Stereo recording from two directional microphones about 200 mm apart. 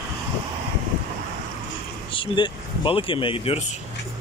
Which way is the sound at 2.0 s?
25° left (ahead or behind).